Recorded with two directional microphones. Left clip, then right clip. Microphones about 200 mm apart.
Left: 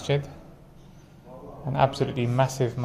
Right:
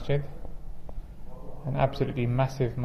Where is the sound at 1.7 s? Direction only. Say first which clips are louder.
Left 4 dB; 5° left (ahead or behind).